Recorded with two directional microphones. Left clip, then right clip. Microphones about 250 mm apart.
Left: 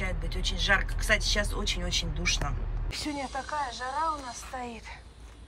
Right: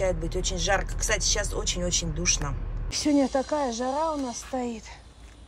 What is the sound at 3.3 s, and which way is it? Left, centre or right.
Speech, right.